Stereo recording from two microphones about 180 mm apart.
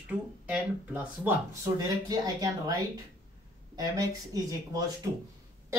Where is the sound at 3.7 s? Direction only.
20° right (ahead or behind).